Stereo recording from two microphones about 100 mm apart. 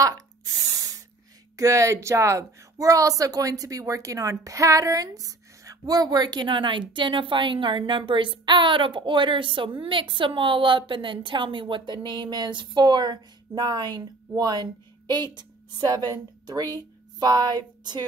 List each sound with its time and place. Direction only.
0.0 s spray: 35° right (ahead or behind)
1.6 s a woman's voice: 30° right (ahead or behind)